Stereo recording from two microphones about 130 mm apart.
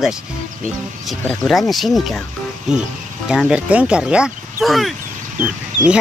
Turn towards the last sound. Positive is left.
turn(degrees=-10)  # may be behind; listen again after turning